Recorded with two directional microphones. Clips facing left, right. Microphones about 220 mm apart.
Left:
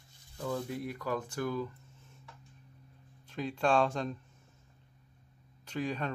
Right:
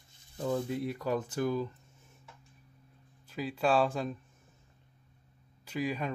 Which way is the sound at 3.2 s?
5° right (ahead or behind).